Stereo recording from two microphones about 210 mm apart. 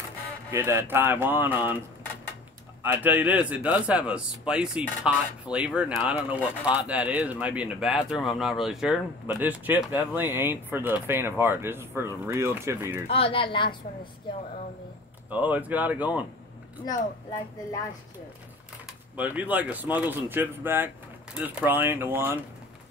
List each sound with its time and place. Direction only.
0.5 s speech: 10° right (ahead or behind)
2.8 s speech: 10° right (ahead or behind)
13.1 s a woman's voice: 25° left (ahead or behind)
15.2 s speech: 5° right (ahead or behind)
18.9 s speech: 5° right (ahead or behind)